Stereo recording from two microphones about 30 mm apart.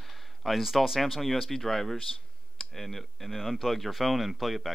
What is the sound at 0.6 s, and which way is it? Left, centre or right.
Speech, centre.